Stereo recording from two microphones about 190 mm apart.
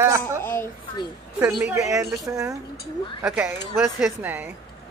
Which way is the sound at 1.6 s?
15° right (ahead or behind).